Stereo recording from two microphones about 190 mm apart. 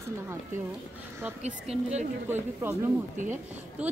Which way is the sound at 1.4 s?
35° right (ahead or behind).